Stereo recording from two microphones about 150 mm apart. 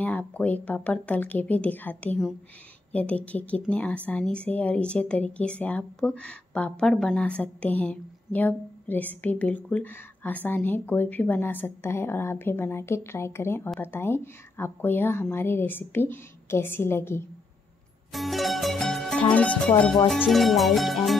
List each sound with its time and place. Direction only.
0.0 s a woman's voice: 10° left (ahead or behind)
18.1 s music: centre (ahead or behind)
19.3 s a woman's voice: 10° left (ahead or behind)
20.1 s music: centre (ahead or behind)